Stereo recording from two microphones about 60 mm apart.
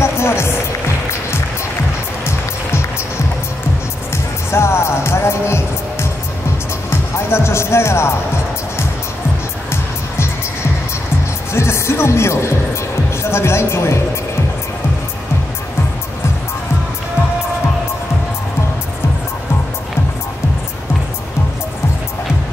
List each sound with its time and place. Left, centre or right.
0.0 s music: left
4.5 s music: left
7.2 s music: left
9.7 s music: left
11.5 s music: left
13.2 s speech: left